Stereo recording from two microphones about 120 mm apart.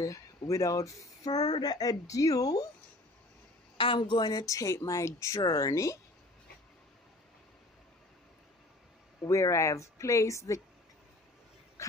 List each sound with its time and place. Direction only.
0.5 s speech: 25° left (ahead or behind)
3.7 s speech: 45° left (ahead or behind); by 5.9 s 25° left (ahead or behind)
9.2 s speech: 25° left (ahead or behind)